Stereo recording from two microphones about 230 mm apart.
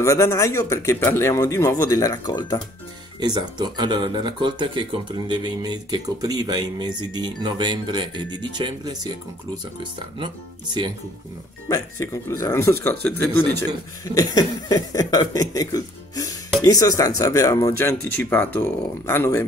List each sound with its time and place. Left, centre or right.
0.0 s speech: centre
3.2 s speech: centre
11.7 s speech: centre
14.0 s speech: centre